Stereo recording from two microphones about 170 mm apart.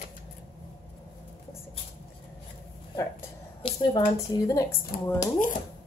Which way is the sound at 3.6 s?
25° left (ahead or behind).